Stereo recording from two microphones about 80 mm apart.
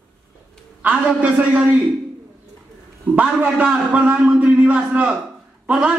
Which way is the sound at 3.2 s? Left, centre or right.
Centre.